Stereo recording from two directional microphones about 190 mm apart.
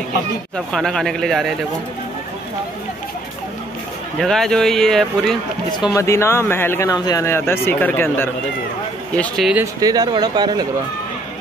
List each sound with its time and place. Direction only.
0.7 s a man's voice: centre (ahead or behind)
4.2 s a man's voice: 5° left (ahead or behind)
5.9 s speech: 15° left (ahead or behind)
9.8 s speech: 20° right (ahead or behind)